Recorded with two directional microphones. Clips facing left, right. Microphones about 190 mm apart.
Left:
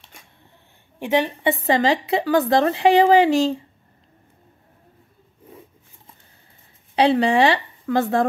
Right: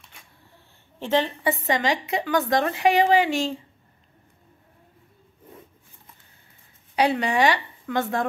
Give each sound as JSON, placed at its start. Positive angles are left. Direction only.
{"t": 0.9, "sound": "a woman's voice", "side_deg": 15}
{"t": 1.5, "sound": "speech", "side_deg": 35}
{"t": 7.0, "sound": "speech", "side_deg": 30}